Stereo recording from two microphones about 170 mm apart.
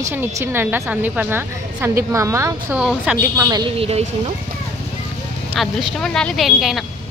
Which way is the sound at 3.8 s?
35° right (ahead or behind).